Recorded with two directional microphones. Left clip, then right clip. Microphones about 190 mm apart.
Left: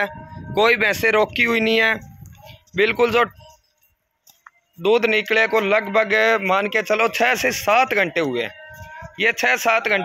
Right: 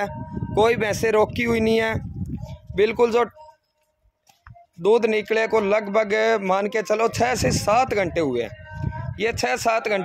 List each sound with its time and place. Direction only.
0.6 s speech: 15° right (ahead or behind)
4.8 s a man's voice: 10° right (ahead or behind)